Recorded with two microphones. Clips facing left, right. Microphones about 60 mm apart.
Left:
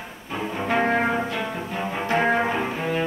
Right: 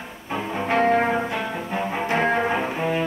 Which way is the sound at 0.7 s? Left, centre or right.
Centre.